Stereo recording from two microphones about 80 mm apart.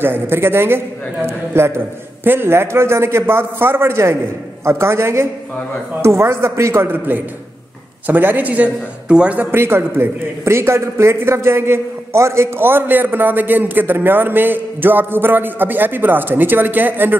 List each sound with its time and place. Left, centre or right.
0.0 s a man's voice: right
9.5 s a man's voice: right